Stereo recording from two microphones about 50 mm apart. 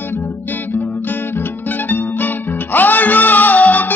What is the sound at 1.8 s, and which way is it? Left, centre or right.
Music, left.